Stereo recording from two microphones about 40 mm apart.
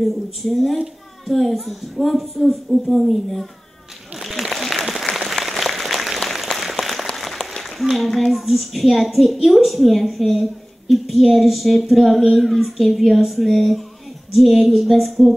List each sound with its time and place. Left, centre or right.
0.0 s a woman's voice: centre
4.2 s applause: centre
7.4 s a sound: centre
7.9 s a woman's voice: centre